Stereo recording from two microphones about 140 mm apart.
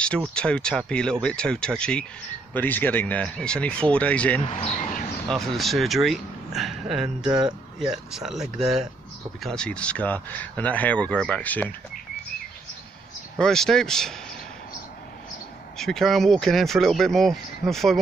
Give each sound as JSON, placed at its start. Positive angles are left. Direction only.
{"t": 0.3, "sound": "speech", "side_deg": 5}
{"t": 4.4, "sound": "speech", "side_deg": 45}
{"t": 5.3, "sound": "speech", "side_deg": 0}
{"t": 13.4, "sound": "speech", "side_deg": 5}
{"t": 15.8, "sound": "speech", "side_deg": 0}